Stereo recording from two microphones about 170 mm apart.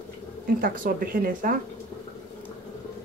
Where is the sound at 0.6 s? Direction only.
55° right (ahead or behind).